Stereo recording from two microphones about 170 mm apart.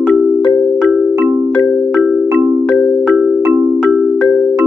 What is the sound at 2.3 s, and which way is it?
Music, 15° right (ahead or behind).